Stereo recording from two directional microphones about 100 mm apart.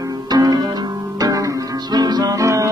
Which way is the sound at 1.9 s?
40° right (ahead or behind).